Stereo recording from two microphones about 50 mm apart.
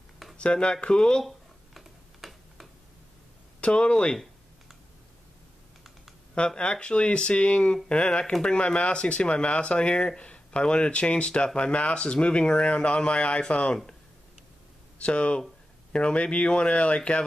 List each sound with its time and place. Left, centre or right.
0.4 s speech: left
1.2 s a sound: centre
3.6 s speech: centre
6.3 s speech: left
15.0 s speech: left